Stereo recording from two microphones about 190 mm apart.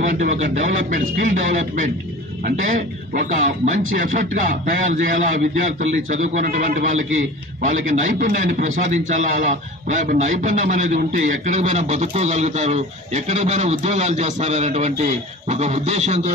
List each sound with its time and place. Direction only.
0.0 s a man's voice: 45° right (ahead or behind)